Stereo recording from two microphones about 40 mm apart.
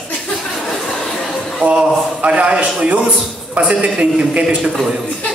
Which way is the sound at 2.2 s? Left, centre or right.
Right.